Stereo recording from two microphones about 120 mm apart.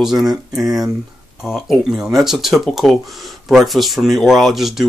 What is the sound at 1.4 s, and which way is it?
Speech, 5° right (ahead or behind).